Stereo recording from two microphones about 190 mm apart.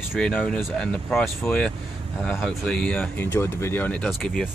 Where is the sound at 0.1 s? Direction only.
5° left (ahead or behind).